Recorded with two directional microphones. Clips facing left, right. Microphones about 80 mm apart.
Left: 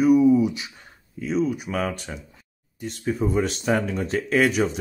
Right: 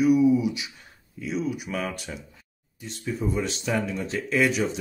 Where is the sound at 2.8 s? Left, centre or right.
Left.